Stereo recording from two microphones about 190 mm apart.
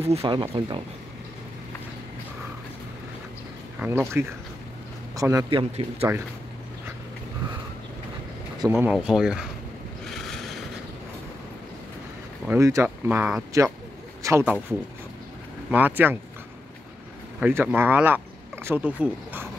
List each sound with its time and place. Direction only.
0.0 s speech: 30° right (ahead or behind)
3.8 s speech: 15° right (ahead or behind)
5.5 s speech: 30° right (ahead or behind)
8.7 s speech: centre (ahead or behind)
12.4 s a man's voice: 15° right (ahead or behind)
15.7 s speech: 10° right (ahead or behind)
17.4 s speech: 10° right (ahead or behind)